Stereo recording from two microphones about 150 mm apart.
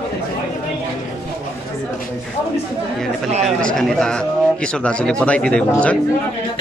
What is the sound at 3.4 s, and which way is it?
Speech, centre (ahead or behind).